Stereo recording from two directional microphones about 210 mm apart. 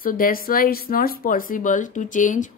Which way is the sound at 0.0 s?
45° left (ahead or behind).